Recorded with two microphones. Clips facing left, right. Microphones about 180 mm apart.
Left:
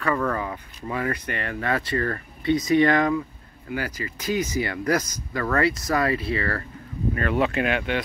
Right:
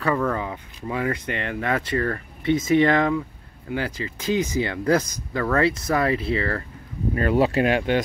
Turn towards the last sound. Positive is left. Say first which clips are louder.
# right 4 dB
turn(degrees=-35)  # may be behind; listen again after turning